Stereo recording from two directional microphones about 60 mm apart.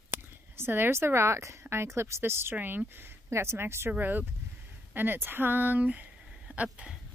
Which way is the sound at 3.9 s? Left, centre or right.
Right.